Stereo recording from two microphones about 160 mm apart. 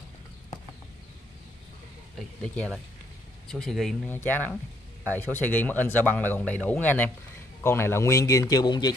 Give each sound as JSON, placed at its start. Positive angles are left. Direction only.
{"t": 2.4, "sound": "a man's voice", "side_deg": 5}